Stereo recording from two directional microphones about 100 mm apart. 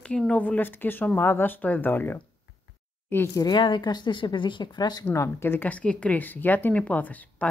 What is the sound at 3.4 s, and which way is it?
Speech, 50° left (ahead or behind).